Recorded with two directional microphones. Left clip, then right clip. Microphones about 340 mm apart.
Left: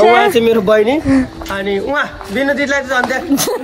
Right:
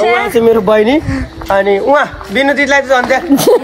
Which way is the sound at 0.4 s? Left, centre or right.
Centre.